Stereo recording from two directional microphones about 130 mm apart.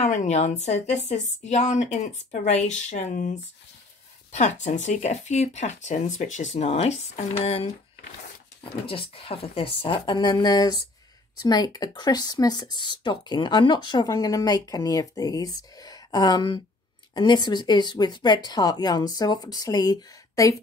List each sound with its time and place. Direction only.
0.0 s speech: 65° left (ahead or behind)
8.8 s speech: 45° left (ahead or behind); by 20.5 s 30° left (ahead or behind)